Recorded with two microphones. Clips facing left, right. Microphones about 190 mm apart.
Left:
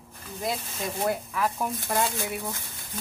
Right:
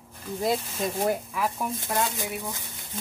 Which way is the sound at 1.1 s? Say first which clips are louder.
Even; 15° right (ahead or behind).